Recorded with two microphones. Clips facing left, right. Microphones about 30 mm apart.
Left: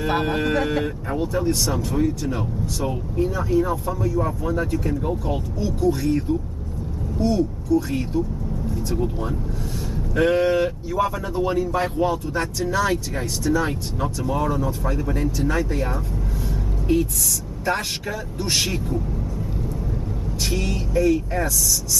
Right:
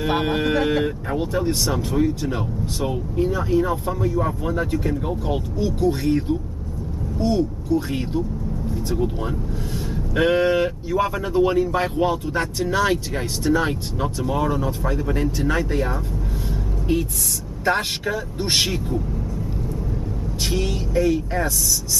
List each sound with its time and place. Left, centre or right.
0.2 s speech: centre
1.2 s speech: right
13.4 s speech: right
13.7 s speech: centre
16.8 s speech: centre
18.4 s speech: right
20.4 s speech: centre